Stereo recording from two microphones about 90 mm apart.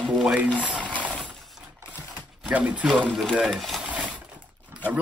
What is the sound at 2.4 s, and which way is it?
Speech, 15° right (ahead or behind).